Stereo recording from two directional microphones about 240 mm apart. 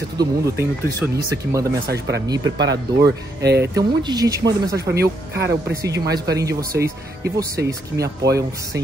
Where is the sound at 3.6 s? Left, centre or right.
Centre.